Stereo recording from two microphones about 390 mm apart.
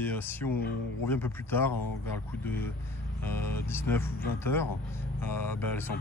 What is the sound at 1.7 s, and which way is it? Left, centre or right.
Speech, left.